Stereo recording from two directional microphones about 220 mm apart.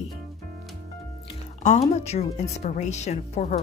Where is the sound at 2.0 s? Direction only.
30° left (ahead or behind).